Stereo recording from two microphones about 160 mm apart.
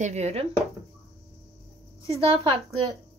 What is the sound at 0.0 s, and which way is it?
Speech, 45° right (ahead or behind).